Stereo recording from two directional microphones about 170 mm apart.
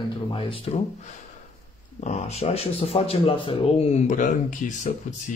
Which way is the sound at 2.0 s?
40° left (ahead or behind).